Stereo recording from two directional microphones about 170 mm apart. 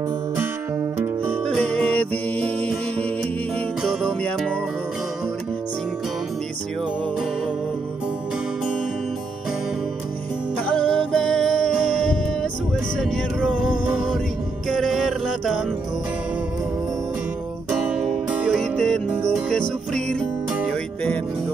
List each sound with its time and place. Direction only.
1.5 s music: 10° left (ahead or behind)
10.8 s music: 5° left (ahead or behind)
12.9 s a sound: 5° left (ahead or behind)
14.7 s music: centre (ahead or behind)
17.9 s music: centre (ahead or behind)